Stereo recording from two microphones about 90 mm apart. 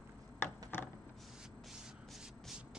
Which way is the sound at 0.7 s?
25° left (ahead or behind).